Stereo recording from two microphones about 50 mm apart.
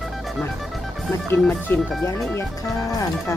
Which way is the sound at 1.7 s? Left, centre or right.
Left.